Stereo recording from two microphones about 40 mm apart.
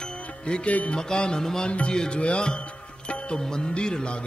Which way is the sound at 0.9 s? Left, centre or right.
Left.